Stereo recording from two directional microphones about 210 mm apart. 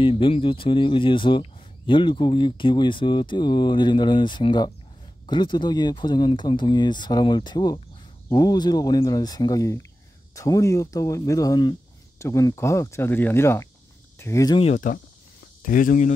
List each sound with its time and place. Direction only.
0.0 s speech: 25° left (ahead or behind)
14.6 s speech: 35° left (ahead or behind)